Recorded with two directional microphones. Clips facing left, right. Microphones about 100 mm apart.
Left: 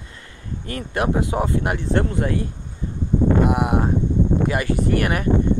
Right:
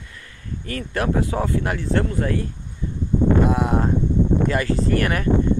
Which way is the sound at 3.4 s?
15° left (ahead or behind).